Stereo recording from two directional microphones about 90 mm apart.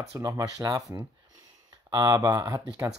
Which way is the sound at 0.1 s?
40° right (ahead or behind).